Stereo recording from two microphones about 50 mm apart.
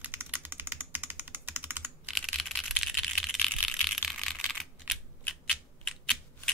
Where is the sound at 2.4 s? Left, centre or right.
Centre.